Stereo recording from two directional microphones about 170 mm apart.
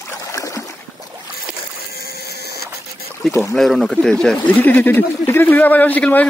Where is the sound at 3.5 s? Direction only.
Centre (ahead or behind).